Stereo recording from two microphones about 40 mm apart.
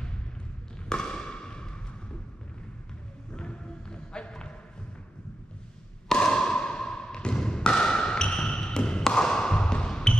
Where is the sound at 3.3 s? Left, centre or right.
Left.